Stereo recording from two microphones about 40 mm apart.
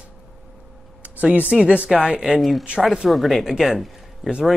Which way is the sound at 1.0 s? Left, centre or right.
Right.